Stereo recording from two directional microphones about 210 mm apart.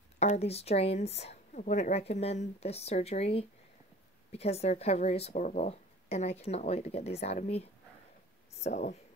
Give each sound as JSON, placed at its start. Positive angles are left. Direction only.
{"t": 0.2, "sound": "a woman's voice", "side_deg": 30}
{"t": 8.6, "sound": "speech", "side_deg": 35}